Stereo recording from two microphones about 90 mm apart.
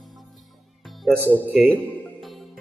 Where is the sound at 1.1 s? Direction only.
20° left (ahead or behind).